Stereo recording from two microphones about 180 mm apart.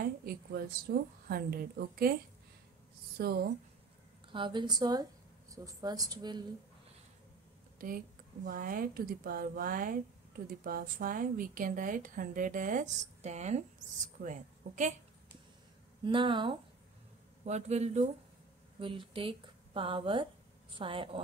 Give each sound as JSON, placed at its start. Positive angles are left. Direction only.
{"t": 0.0, "sound": "a woman's voice", "side_deg": -55}
{"t": 3.2, "sound": "a woman's voice", "side_deg": -60}
{"t": 4.3, "sound": "speech", "side_deg": -25}
{"t": 7.8, "sound": "a woman's voice", "side_deg": -50}
{"t": 16.0, "sound": "speech", "side_deg": -25}
{"t": 17.5, "sound": "a woman's voice", "side_deg": -40}